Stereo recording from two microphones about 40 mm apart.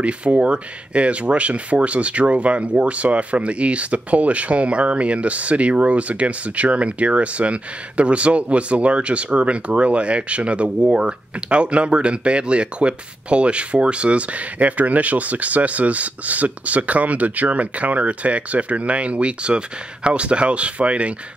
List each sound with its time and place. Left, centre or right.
0.0 s speech: right